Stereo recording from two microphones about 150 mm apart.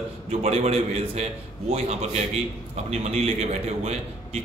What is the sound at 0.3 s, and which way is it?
A man's voice, 45° right (ahead or behind).